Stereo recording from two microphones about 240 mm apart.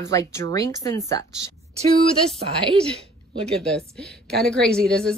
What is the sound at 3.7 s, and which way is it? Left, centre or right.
A woman's voice, centre.